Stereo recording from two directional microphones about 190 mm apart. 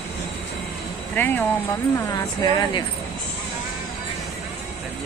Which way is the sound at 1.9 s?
20° left (ahead or behind).